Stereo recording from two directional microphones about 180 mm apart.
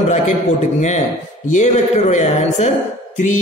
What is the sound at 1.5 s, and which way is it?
A man's voice, 40° left (ahead or behind).